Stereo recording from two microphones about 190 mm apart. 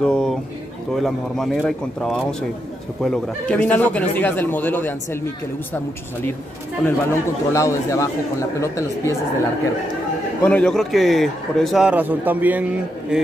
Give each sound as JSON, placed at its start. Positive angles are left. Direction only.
{"t": 0.0, "sound": "a man's voice", "side_deg": 5}
{"t": 6.8, "sound": "a man's voice", "side_deg": 15}
{"t": 10.4, "sound": "a man's voice", "side_deg": 5}